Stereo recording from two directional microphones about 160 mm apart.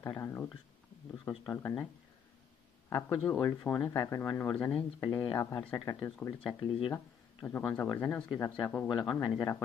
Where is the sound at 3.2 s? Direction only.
5° left (ahead or behind).